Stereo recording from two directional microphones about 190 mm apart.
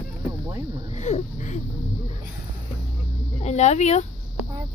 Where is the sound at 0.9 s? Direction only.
35° left (ahead or behind).